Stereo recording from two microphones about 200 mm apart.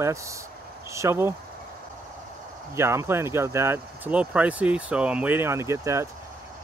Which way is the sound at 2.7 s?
15° right (ahead or behind).